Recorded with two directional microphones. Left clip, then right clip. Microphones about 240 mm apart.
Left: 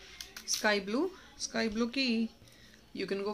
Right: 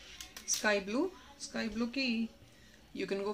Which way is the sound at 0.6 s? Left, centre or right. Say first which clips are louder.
Left 2 dB; centre.